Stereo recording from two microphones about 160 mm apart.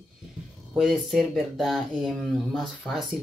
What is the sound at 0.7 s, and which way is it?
Speech, centre (ahead or behind).